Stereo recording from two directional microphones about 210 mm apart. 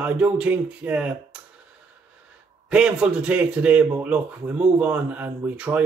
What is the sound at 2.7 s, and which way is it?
Speech, 5° right (ahead or behind).